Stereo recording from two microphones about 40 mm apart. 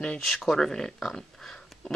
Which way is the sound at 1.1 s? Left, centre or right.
Centre.